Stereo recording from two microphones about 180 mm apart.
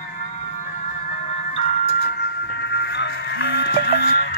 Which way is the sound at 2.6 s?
70° left (ahead or behind).